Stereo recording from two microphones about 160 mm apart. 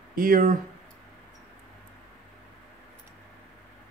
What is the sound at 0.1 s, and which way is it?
Speech, 60° right (ahead or behind).